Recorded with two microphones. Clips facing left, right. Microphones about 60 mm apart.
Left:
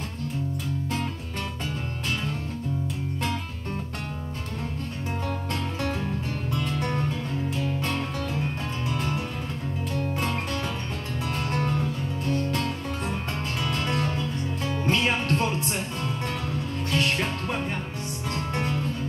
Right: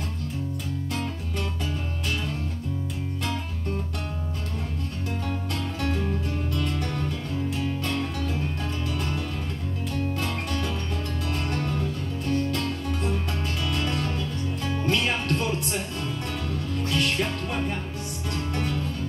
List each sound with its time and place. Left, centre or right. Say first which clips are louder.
6.5 s music: left 4 dB; left
10.2 s music: left 1 dB; left
13.6 s music: left 2 dB; left